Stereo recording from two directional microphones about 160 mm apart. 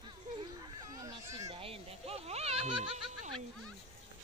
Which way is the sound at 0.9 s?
20° right (ahead or behind).